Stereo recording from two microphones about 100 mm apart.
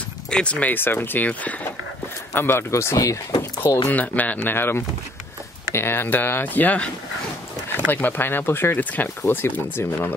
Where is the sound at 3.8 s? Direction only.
15° left (ahead or behind).